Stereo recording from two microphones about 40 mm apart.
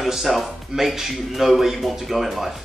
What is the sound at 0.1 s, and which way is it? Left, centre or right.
Speech, centre.